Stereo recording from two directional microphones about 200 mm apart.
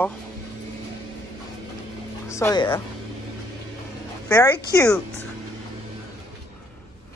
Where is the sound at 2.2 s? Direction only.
15° left (ahead or behind).